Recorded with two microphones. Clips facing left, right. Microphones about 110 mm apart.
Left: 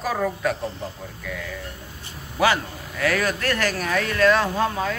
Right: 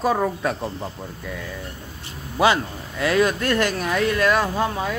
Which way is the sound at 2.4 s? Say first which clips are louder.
Right 2 dB; 20° right (ahead or behind).